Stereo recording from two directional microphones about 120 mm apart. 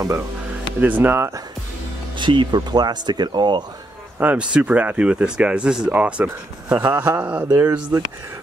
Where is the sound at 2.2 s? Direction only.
40° right (ahead or behind).